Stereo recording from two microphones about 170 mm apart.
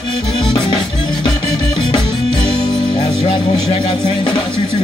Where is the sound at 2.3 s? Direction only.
30° left (ahead or behind).